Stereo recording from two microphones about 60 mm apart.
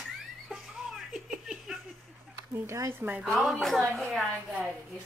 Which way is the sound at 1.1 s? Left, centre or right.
Centre.